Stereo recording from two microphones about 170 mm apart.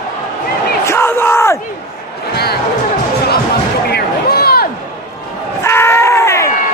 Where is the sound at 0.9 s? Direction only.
15° left (ahead or behind).